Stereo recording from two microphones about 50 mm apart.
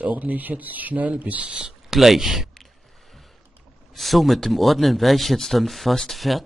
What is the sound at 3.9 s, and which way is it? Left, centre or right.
Speech, centre.